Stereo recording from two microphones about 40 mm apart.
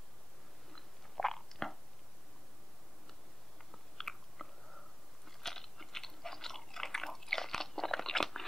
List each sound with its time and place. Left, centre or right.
0.7 s biting: centre
3.7 s chewing: centre